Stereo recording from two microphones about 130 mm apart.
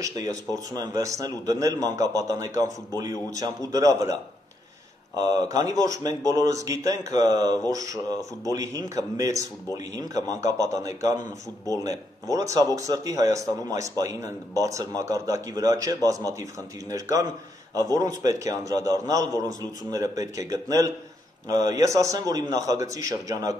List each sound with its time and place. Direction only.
0.7 s speech: 30° right (ahead or behind)
5.2 s speech: 30° right (ahead or behind)